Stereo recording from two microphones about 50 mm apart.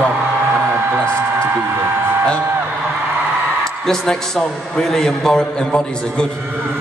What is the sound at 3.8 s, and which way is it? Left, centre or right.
A man's voice, centre.